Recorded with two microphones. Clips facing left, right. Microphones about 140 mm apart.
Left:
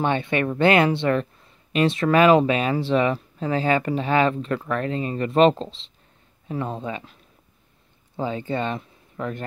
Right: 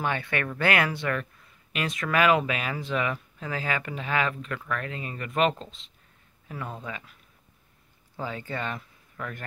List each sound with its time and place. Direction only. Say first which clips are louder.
0.0 s speech: left 7 dB; 25° left (ahead or behind)
8.2 s speech: left 7 dB; 20° left (ahead or behind)